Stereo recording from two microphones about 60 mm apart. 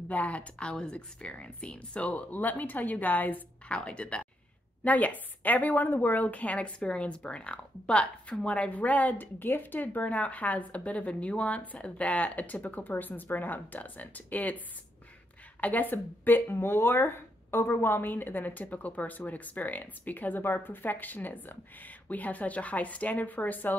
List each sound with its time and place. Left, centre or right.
0.1 s speech: left
3.7 s speech: centre
15.6 s speech: left